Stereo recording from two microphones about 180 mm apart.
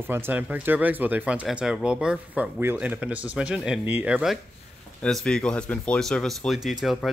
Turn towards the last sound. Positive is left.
turn(degrees=0)  # may be behind; listen again after turning